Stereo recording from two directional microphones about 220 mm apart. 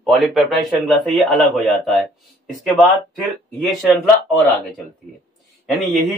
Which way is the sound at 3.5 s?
Centre (ahead or behind).